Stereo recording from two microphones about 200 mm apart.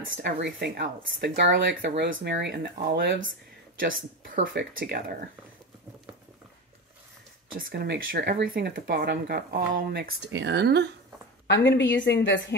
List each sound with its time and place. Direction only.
0.0 s speech: 65° right (ahead or behind)
3.8 s speech: 40° right (ahead or behind)
7.5 s speech: 55° right (ahead or behind)
11.4 s a woman's voice: 60° left (ahead or behind)